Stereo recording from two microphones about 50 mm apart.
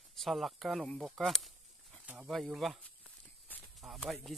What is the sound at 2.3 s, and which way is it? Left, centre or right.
Speech, centre.